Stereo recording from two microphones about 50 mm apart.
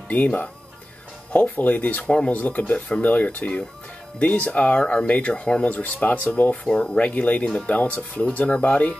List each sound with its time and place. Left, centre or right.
0.1 s speech: left
1.5 s speech: left
2.0 s speech: centre
2.3 s speech: left
6.5 s speech: centre
7.0 s speech: left